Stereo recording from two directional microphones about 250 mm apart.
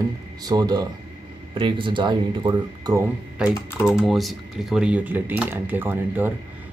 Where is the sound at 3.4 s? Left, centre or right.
Centre.